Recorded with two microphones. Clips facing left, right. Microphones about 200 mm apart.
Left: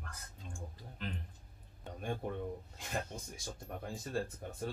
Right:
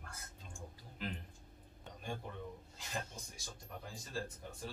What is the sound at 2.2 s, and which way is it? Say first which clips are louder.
Speech: left 8 dB; 50° left (ahead or behind).